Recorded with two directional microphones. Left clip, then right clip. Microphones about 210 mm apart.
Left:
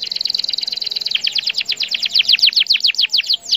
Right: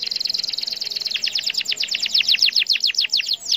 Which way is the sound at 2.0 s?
20° left (ahead or behind).